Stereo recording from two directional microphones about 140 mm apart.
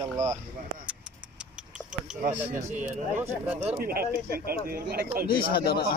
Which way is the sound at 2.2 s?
60° right (ahead or behind).